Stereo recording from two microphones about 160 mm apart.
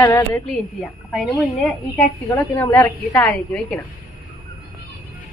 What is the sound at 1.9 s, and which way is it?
A woman's voice, 15° left (ahead or behind).